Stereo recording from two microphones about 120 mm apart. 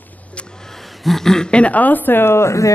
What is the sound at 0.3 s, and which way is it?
A woman's voice, 5° left (ahead or behind).